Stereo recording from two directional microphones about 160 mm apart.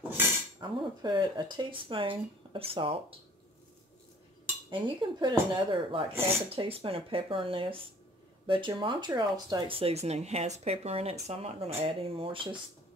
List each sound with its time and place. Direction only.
0.6 s speech: 25° right (ahead or behind)
4.6 s speech: 30° right (ahead or behind)